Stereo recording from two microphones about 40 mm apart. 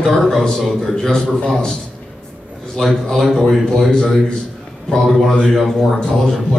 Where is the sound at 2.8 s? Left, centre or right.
Centre.